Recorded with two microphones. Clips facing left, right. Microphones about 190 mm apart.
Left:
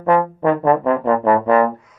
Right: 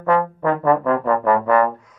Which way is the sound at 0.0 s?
20° left (ahead or behind).